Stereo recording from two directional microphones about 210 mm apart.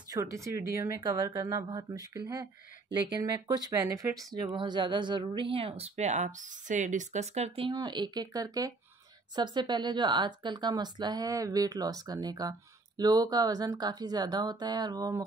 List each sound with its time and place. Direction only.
0.1 s speech: 15° right (ahead or behind)